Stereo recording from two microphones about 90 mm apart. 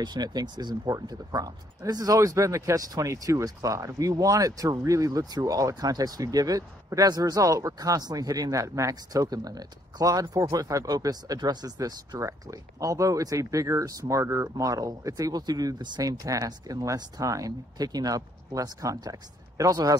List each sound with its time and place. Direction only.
0.0 s speech: 50° right (ahead or behind)